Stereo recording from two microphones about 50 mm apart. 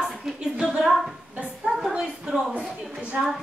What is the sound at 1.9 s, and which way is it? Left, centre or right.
A woman's voice, centre.